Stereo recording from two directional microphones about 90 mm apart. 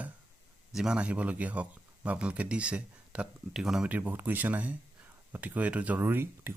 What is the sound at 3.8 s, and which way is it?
Speech, 20° right (ahead or behind).